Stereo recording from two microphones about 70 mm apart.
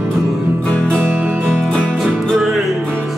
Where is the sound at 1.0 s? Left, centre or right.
Right.